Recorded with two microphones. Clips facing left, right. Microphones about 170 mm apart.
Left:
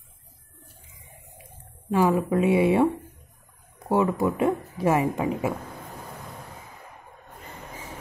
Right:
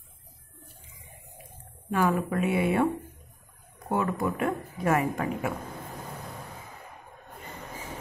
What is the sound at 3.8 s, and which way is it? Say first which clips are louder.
A woman's voice: left 5 dB; 25° left (ahead or behind).